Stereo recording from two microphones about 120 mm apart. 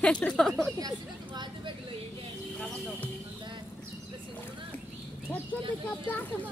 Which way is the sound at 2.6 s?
5° left (ahead or behind).